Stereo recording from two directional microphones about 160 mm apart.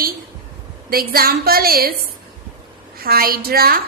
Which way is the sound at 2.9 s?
70° right (ahead or behind).